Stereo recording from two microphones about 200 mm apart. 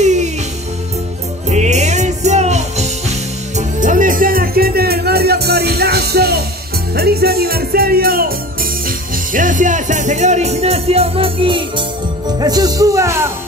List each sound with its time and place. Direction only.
0.0 s music: 35° right (ahead or behind)
1.5 s music: 35° right (ahead or behind)
12.4 s speech: 20° right (ahead or behind)